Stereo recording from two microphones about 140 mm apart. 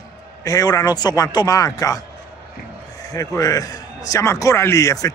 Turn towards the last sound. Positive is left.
turn(degrees=25)  # may be behind; listen again after turning